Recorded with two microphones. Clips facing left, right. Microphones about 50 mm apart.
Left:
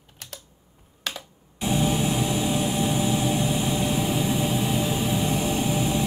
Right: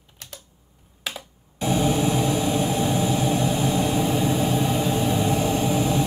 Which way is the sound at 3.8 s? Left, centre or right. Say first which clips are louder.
Right 3 dB; centre.